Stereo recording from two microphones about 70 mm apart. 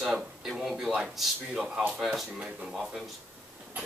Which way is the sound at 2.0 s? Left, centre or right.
Centre.